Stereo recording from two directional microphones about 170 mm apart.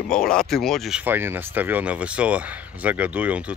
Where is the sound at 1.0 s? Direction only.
10° right (ahead or behind).